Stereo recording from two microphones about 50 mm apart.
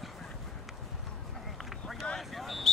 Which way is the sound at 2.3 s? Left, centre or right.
Centre.